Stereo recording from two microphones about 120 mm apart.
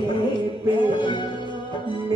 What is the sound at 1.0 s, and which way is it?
Music, 40° left (ahead or behind).